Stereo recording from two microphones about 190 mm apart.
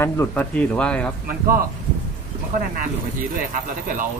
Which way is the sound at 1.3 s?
50° right (ahead or behind).